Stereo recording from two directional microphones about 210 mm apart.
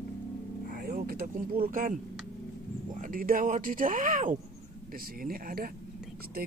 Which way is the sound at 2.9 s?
40° right (ahead or behind).